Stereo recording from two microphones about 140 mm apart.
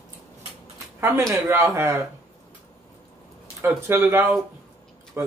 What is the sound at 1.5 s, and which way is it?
Speech, 15° right (ahead or behind).